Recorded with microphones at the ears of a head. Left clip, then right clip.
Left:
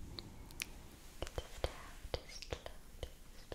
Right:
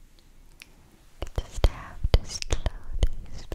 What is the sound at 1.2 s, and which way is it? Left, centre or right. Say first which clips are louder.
Whispering: right 10 dB; right.